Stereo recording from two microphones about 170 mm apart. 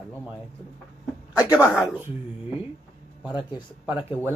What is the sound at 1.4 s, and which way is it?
Speech, 20° left (ahead or behind).